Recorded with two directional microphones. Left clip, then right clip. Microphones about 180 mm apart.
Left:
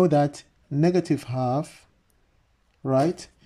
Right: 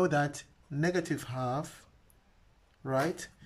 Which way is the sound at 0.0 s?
25° left (ahead or behind).